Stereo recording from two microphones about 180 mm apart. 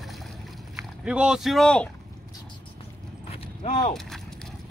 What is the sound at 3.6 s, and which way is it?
Speech, 35° left (ahead or behind).